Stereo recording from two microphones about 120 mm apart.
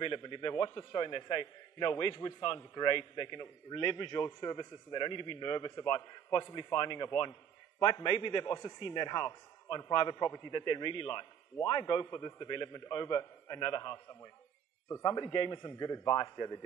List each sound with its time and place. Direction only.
0.0 s a man's voice: 40° left (ahead or behind)
8.5 s speech: 25° left (ahead or behind)
8.7 s a man's voice: 35° left (ahead or behind)
10.5 s a man's voice: 40° left (ahead or behind)